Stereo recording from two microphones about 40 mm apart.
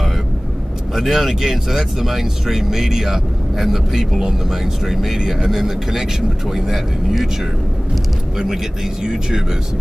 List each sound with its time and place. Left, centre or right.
0.9 s speech: centre
9.0 s speech: centre